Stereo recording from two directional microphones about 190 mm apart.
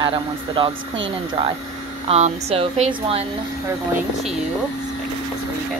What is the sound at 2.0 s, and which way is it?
A woman's voice, 35° right (ahead or behind).